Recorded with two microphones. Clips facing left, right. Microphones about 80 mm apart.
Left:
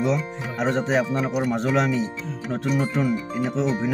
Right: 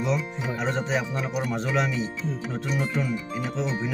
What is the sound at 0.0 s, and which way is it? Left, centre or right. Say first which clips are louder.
Music: left 3 dB; left.